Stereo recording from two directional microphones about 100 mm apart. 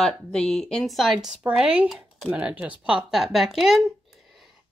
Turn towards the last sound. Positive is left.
turn(degrees=0)  # may be behind; listen again after turning